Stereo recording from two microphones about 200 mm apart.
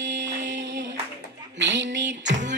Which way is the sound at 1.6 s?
65° right (ahead or behind).